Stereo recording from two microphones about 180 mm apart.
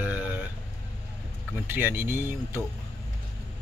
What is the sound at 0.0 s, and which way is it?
Sheep, 10° right (ahead or behind).